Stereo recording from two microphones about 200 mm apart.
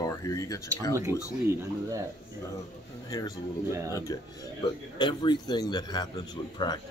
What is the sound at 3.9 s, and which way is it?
A man's voice, 15° left (ahead or behind).